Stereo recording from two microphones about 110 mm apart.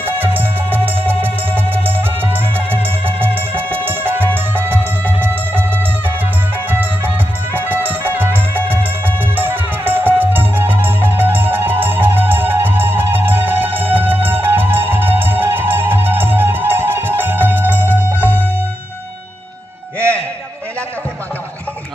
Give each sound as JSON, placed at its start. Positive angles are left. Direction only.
{"t": 0.0, "sound": "music", "side_deg": -20}
{"t": 7.5, "sound": "music", "side_deg": -15}